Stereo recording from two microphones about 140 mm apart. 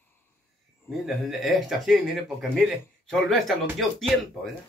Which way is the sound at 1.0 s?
Centre (ahead or behind).